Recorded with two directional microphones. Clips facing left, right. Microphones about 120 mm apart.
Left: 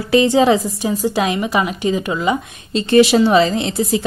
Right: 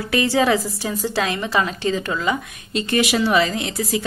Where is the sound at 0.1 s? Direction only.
20° left (ahead or behind).